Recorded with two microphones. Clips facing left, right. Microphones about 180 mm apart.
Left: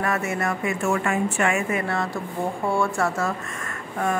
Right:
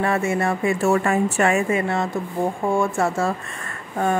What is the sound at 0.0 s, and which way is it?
A woman's voice, 30° right (ahead or behind).